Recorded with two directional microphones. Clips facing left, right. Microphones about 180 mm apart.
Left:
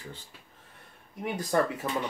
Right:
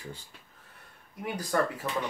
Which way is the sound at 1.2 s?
20° left (ahead or behind).